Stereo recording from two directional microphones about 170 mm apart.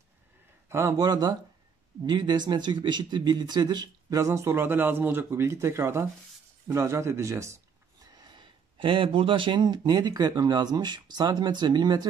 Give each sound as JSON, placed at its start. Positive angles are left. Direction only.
{"t": 0.7, "sound": "a man's voice", "side_deg": -15}